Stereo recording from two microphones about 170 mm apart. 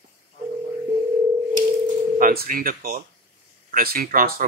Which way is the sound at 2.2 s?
55° right (ahead or behind).